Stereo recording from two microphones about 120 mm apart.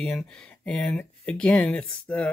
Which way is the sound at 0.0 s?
10° left (ahead or behind).